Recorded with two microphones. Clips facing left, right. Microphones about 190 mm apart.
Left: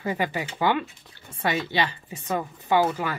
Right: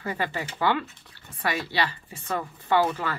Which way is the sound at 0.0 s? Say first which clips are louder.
Left 3 dB; 15° left (ahead or behind).